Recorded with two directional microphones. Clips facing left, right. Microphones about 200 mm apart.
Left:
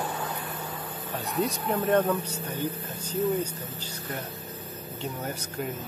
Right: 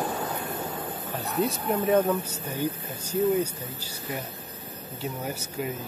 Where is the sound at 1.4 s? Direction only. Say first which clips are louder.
Right 2 dB; 5° right (ahead or behind).